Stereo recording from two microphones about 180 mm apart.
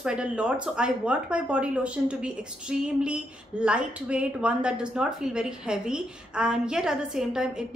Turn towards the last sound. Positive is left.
turn(degrees=-5)  # may be behind; listen again after turning